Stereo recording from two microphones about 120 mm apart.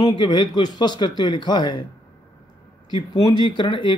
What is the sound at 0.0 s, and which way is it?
Speech, 35° left (ahead or behind).